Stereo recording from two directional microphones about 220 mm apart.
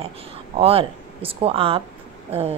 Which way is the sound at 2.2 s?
25° right (ahead or behind).